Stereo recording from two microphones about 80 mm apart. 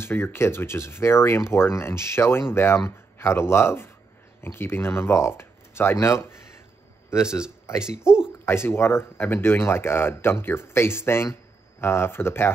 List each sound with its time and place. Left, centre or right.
0.0 s speech: left
7.8 s speech: centre
8.5 s speech: left